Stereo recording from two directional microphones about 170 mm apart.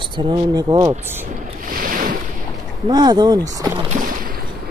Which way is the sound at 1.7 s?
55° right (ahead or behind).